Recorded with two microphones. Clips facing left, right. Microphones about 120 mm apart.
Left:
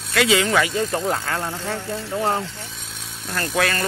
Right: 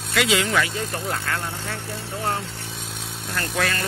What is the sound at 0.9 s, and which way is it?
Speech, 30° left (ahead or behind).